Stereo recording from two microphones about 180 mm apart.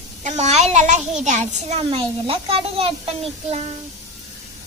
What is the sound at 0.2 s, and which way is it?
A child's voice, 40° right (ahead or behind).